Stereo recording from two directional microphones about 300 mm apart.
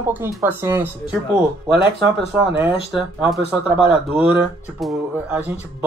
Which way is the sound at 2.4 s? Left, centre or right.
Centre.